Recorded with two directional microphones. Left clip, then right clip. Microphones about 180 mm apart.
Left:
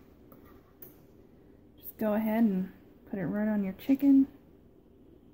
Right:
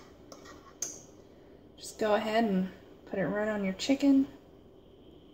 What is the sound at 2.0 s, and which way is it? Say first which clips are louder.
Speech: right 2 dB; 45° left (ahead or behind).